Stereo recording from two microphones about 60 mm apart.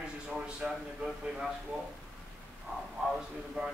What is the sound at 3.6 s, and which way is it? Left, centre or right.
Speech, right.